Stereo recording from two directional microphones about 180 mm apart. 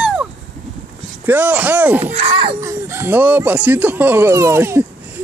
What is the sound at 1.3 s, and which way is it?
Speech, 10° right (ahead or behind).